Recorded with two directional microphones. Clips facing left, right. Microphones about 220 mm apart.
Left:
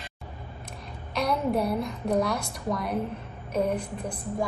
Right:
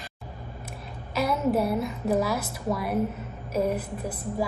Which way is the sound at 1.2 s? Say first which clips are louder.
Right 2 dB; 5° right (ahead or behind).